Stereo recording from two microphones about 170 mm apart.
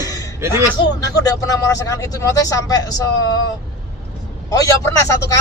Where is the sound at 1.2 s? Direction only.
20° left (ahead or behind).